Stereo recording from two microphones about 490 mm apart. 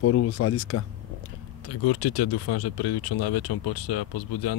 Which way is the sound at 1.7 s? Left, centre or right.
Left.